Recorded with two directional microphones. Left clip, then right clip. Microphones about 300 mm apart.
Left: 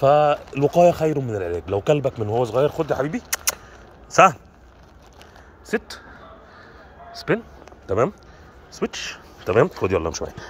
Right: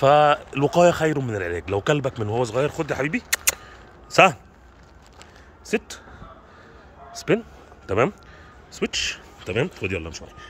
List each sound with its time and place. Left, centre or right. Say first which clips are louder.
0.0 s speech: even; centre
3.0 s a man's voice: right 1 dB; centre
5.7 s speech: even; centre
7.1 s a sound: right 1 dB; centre
8.8 s speech: right 2 dB; centre